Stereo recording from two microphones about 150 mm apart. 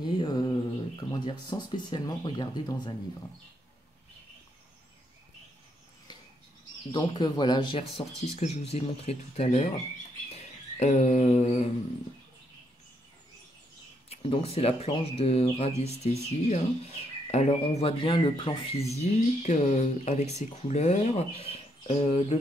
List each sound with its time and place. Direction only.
0.0 s a sound: 30° left (ahead or behind)
1.1 s speech: 30° left (ahead or behind)
6.9 s speech: 30° left (ahead or behind)
8.4 s speech: 50° left (ahead or behind)
10.3 s a sound: 50° left (ahead or behind)
14.0 s speech: 40° left (ahead or behind)
18.9 s speech: 50° left (ahead or behind)